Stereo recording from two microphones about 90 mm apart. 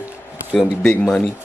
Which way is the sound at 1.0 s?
Centre (ahead or behind).